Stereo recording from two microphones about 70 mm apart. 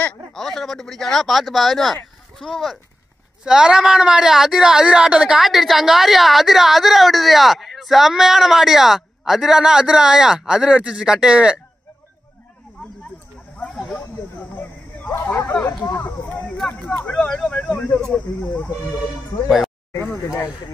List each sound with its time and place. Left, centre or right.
0.3 s a woman's voice: centre
3.4 s speech: centre
5.4 s a woman's voice: centre
13.6 s snake: centre
15.2 s a sound: left
15.6 s speech: left
17.0 s a sound: centre
18.1 s speech: left
19.9 s a sound: left